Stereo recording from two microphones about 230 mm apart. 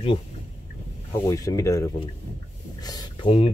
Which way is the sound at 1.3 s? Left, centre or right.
Centre.